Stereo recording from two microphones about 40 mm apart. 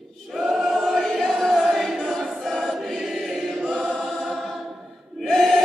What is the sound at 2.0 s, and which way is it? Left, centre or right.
Choir, centre.